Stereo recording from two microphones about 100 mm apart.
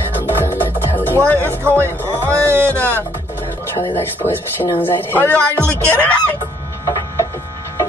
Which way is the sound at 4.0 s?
20° left (ahead or behind).